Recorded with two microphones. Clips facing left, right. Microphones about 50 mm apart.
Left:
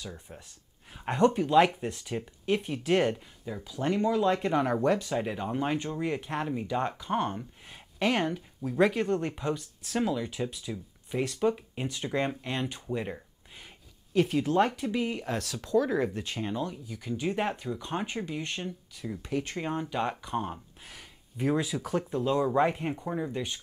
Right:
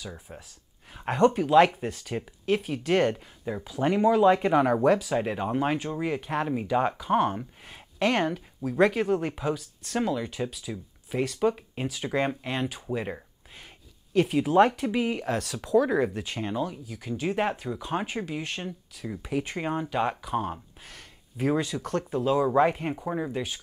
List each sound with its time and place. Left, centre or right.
0.0 s speech: centre
3.4 s speech: right
4.6 s speech: centre
5.1 s speech: right
6.4 s speech: centre
15.2 s speech: centre
16.9 s speech: centre
20.8 s a sound: centre
21.5 s speech: centre
22.1 s speech: centre